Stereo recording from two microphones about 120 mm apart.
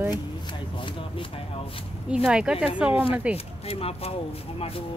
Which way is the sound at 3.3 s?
55° left (ahead or behind).